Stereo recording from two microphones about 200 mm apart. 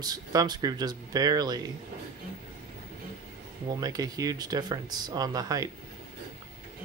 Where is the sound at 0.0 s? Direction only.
20° right (ahead or behind).